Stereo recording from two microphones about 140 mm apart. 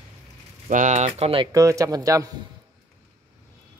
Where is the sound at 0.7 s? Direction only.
65° right (ahead or behind).